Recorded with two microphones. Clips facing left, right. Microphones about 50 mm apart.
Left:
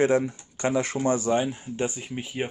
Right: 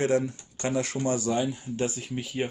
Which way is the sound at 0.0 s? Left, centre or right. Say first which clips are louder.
Left 3 dB; left.